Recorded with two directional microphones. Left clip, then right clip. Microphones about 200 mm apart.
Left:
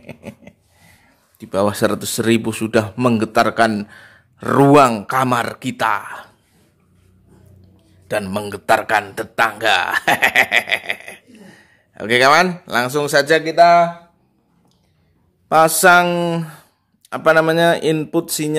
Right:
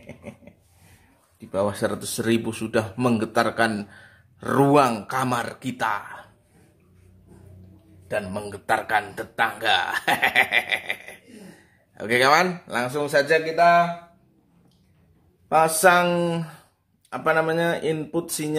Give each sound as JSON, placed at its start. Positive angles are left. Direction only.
{"t": 0.0, "sound": "a sound", "side_deg": 50}
{"t": 1.5, "sound": "speech", "side_deg": 50}
{"t": 8.1, "sound": "speech", "side_deg": 50}
{"t": 15.4, "sound": "speech", "side_deg": 45}